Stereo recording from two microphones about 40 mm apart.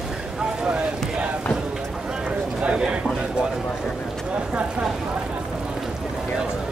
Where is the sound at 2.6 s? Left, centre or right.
Right.